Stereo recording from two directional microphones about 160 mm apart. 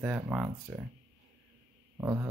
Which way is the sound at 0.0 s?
10° right (ahead or behind).